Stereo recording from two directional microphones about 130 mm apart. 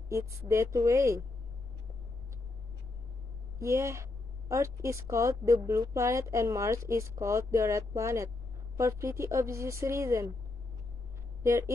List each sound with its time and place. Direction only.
0.1 s a woman's voice: 20° right (ahead or behind)
3.5 s a woman's voice: 20° right (ahead or behind)
11.4 s a woman's voice: 25° right (ahead or behind)